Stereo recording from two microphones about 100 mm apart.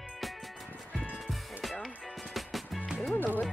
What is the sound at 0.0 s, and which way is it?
Music, 5° right (ahead or behind).